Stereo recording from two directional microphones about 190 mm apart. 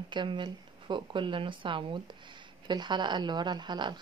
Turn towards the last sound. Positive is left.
turn(degrees=-25)  # may be behind; listen again after turning